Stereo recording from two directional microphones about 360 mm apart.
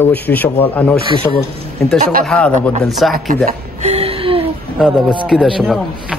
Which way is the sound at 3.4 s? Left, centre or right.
Centre.